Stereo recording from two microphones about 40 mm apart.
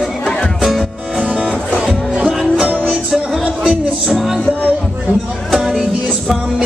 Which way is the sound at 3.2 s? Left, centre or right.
Right.